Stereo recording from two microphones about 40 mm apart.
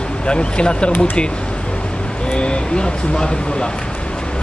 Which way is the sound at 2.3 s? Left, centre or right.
Left.